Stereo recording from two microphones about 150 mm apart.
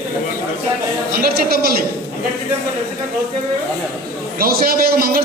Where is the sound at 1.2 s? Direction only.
90° right.